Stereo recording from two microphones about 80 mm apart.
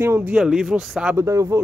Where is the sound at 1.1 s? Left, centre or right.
Right.